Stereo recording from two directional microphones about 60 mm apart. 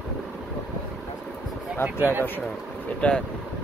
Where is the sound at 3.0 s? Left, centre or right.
Left.